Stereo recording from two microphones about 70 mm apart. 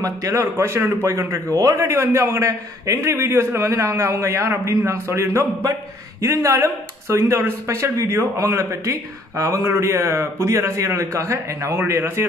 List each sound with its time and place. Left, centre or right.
0.0 s a man's voice: right